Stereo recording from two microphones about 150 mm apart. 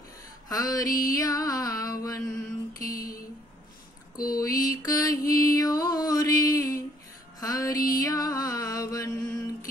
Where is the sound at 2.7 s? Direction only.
70° left (ahead or behind).